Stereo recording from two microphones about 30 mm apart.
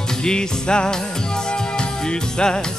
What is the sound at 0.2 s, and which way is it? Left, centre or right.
Music, left.